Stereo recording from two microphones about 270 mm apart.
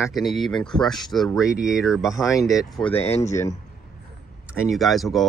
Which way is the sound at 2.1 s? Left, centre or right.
Centre.